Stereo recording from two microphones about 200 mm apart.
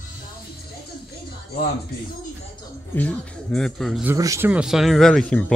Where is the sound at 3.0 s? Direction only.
5° left (ahead or behind).